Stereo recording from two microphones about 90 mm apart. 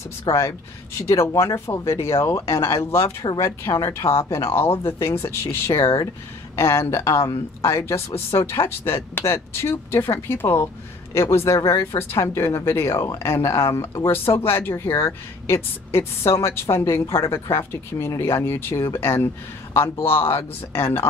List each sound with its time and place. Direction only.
0.3 s speech: 55° left (ahead or behind)
0.9 s a woman's voice: 30° left (ahead or behind)